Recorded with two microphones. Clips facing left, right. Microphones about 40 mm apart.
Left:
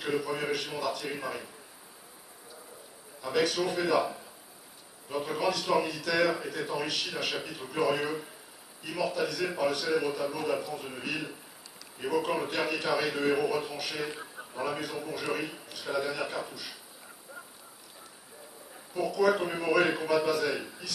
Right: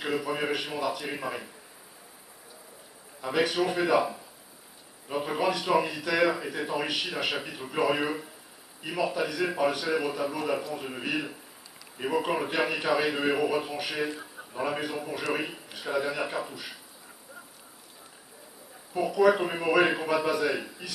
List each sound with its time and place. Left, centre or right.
0.0 s speech: centre
3.2 s a man's voice: right
14.1 s a sound: centre
14.5 s a man's voice: centre
18.9 s speech: centre